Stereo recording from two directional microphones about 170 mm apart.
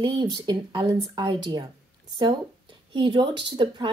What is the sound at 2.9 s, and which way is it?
A woman's voice, 30° right (ahead or behind).